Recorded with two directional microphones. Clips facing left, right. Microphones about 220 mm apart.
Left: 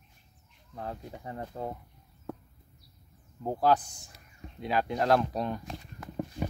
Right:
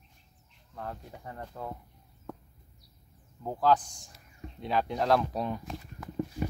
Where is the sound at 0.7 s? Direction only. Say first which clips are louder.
Left 2 dB; 20° left (ahead or behind).